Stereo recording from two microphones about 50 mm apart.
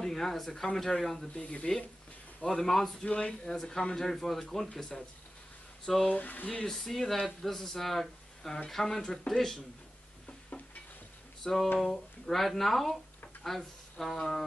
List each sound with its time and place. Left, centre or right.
0.0 s speech: centre
0.5 s speech: centre
1.3 s speech: left
3.1 s speech: left
6.0 s speech: left
6.6 s speech: centre
10.2 s stir: left
11.4 s speech: centre